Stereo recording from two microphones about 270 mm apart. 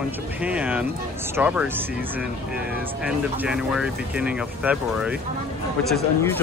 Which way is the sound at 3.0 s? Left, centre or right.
Centre.